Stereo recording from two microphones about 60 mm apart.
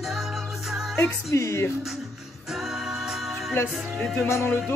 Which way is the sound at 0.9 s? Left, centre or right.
Left.